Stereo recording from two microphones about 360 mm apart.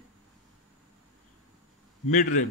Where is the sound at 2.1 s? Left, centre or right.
Left.